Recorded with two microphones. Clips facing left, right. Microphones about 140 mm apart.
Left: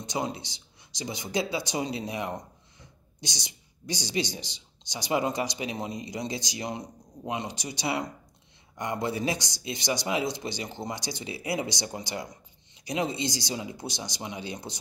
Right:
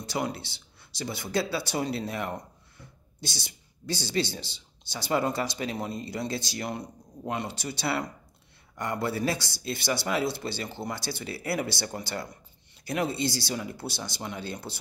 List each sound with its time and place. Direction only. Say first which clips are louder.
0.0 s speech: even; 20° left (ahead or behind)